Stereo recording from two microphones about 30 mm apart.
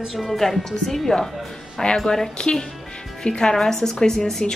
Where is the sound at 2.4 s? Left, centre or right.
Left.